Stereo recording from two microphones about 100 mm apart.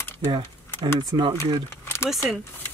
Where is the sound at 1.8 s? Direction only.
25° left (ahead or behind).